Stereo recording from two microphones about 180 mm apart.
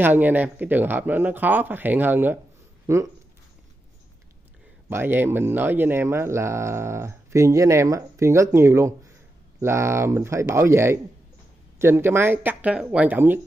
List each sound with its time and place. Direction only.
0.0 s speech: 10° right (ahead or behind)
4.8 s speech: 10° right (ahead or behind)